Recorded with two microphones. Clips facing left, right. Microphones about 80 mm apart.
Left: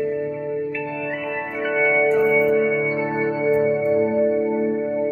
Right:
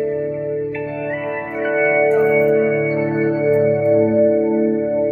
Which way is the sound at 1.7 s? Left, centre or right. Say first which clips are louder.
Right 3 dB; centre.